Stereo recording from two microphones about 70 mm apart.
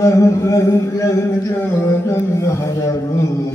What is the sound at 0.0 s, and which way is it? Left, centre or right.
Mantra, left.